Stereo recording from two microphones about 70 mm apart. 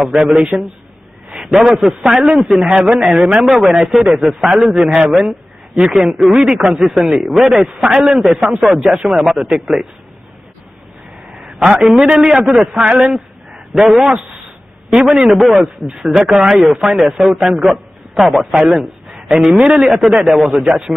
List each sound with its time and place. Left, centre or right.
0.3 s speech: centre
11.2 s a sound: centre
11.8 s a man's voice: centre